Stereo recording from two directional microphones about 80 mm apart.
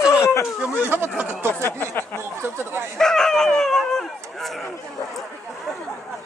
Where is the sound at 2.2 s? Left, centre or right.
Right.